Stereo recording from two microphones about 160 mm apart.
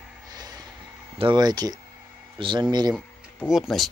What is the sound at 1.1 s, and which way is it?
Speech, 30° right (ahead or behind).